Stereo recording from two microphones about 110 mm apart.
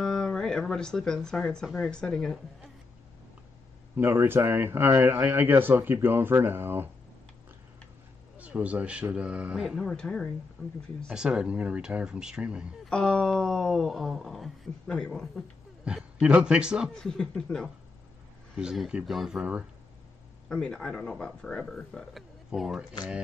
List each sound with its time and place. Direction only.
0.0 s speech: 5° left (ahead or behind)
3.9 s speech: 20° right (ahead or behind)
8.4 s speech: 10° right (ahead or behind); by 10.3 s 5° left (ahead or behind)
11.1 s speech: 10° right (ahead or behind)
12.9 s speech: 5° left (ahead or behind)
15.8 s speech: 10° right (ahead or behind)
16.9 s speech: 5° left (ahead or behind)
18.6 s speech: 5° right (ahead or behind)
20.4 s speech: 5° left (ahead or behind)